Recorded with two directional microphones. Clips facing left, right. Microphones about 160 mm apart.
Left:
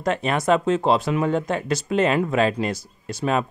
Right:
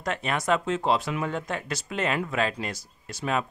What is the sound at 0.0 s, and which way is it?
Speech, 30° left (ahead or behind).